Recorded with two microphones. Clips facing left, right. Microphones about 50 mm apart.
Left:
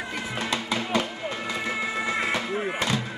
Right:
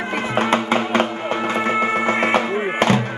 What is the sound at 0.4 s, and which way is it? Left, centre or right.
Music, right.